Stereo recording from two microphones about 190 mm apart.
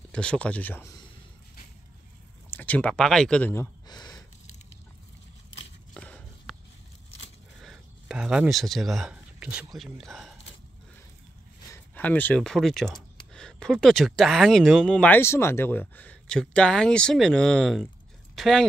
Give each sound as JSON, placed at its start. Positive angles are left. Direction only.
{"t": 0.1, "sound": "speech", "side_deg": 5}
{"t": 2.5, "sound": "speech", "side_deg": 10}
{"t": 3.8, "sound": "a sound", "side_deg": 20}
{"t": 5.9, "sound": "walk", "side_deg": 5}
{"t": 7.6, "sound": "speech", "side_deg": -5}
{"t": 11.7, "sound": "speech", "side_deg": 10}